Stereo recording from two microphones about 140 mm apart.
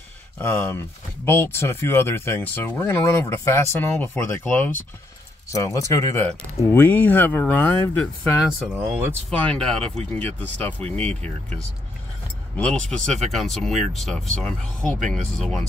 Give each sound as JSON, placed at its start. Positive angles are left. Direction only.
{"t": 0.4, "sound": "speech", "side_deg": 20}
{"t": 8.4, "sound": "speech", "side_deg": 0}
{"t": 8.7, "sound": "speech", "side_deg": -15}
{"t": 9.4, "sound": "speech", "side_deg": 5}
{"t": 12.5, "sound": "speech", "side_deg": 5}